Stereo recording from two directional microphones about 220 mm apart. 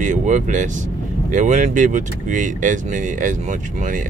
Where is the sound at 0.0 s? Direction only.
35° right (ahead or behind).